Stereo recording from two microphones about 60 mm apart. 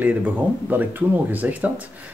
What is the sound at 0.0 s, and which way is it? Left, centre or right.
Speech, right.